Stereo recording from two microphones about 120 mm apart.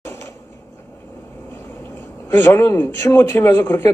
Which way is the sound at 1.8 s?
20° left (ahead or behind).